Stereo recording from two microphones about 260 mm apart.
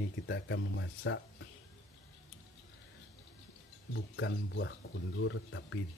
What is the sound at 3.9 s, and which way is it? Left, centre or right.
Speech, left.